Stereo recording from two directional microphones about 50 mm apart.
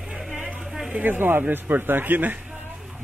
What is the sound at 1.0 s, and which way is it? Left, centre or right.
Speech, right.